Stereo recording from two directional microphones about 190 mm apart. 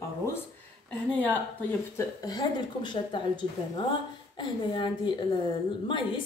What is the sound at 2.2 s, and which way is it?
A woman's voice, 20° left (ahead or behind).